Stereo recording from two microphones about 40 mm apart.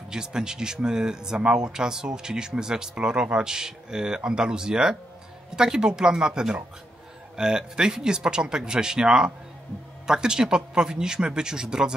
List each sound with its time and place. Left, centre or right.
0.1 s speech: centre